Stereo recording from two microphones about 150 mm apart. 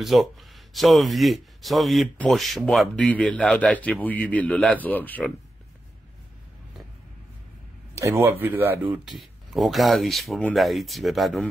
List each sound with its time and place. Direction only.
0.0 s speech: centre (ahead or behind)
7.9 s speech: 15° right (ahead or behind)
9.1 s speech: centre (ahead or behind)